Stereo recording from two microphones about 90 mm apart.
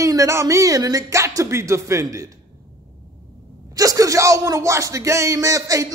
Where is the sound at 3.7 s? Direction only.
40° right (ahead or behind).